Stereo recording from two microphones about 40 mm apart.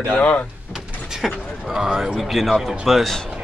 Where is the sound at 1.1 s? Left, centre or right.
Centre.